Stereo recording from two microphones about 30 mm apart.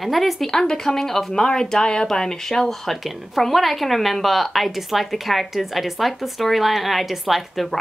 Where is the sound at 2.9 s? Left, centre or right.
Centre.